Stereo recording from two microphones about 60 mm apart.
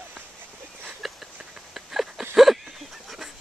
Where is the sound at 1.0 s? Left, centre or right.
Centre.